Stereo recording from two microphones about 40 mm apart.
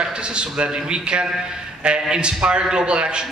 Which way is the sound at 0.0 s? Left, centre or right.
Right.